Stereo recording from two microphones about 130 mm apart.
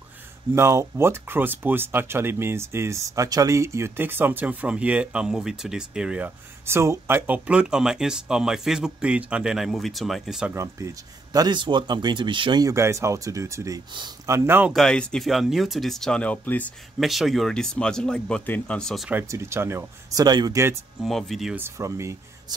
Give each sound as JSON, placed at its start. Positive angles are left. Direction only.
{"t": 0.6, "sound": "speech", "side_deg": -20}
{"t": 10.5, "sound": "speech", "side_deg": -20}
{"t": 11.3, "sound": "speech", "side_deg": -35}
{"t": 12.6, "sound": "speech", "side_deg": -20}
{"t": 13.9, "sound": "speech", "side_deg": -35}
{"t": 14.3, "sound": "speech", "side_deg": -20}
{"t": 14.7, "sound": "speech", "side_deg": 5}
{"t": 17.0, "sound": "speech", "side_deg": 0}
{"t": 19.2, "sound": "speech", "side_deg": -20}
{"t": 20.2, "sound": "speech", "side_deg": -30}
{"t": 21.0, "sound": "speech", "side_deg": 0}
{"t": 21.5, "sound": "speech", "side_deg": -20}